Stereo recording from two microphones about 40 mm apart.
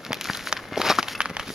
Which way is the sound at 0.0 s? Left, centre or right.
Centre.